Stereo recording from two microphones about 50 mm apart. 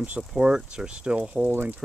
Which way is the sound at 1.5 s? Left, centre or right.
Right.